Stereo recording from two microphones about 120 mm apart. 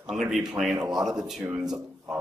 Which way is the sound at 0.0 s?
5° right (ahead or behind).